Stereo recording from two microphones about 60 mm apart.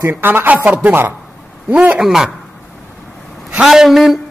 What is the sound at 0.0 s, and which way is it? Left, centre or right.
A man's voice, right.